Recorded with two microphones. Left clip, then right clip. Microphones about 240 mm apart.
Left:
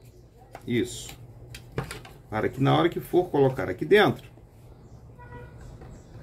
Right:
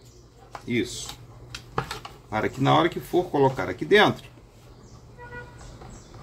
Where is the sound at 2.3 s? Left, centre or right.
Centre.